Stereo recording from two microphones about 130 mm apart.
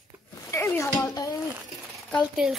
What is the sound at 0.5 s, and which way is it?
Speech, 20° left (ahead or behind).